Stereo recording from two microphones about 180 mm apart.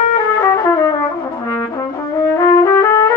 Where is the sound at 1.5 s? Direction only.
15° left (ahead or behind).